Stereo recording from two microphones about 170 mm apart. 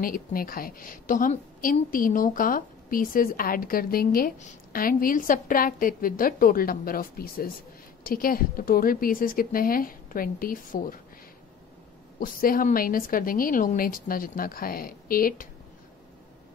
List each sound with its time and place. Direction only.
0.0 s a woman's voice: 55° left (ahead or behind)
12.2 s a woman's voice: 55° left (ahead or behind)